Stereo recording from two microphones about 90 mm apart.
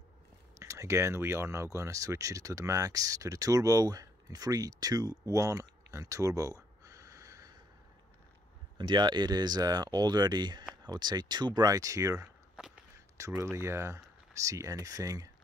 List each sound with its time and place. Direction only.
0.6 s speech: 35° right (ahead or behind)
5.9 s a sound: 40° right (ahead or behind)
8.7 s speech: 55° right (ahead or behind)